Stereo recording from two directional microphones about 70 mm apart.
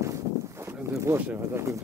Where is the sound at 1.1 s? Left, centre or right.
Right.